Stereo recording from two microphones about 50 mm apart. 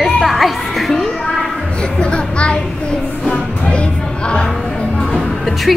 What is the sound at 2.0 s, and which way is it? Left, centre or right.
Music, left.